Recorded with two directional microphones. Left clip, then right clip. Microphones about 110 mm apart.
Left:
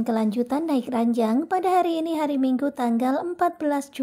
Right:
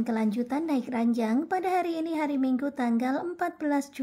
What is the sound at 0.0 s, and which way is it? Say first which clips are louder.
A woman's voice: left 5 dB; 30° left (ahead or behind).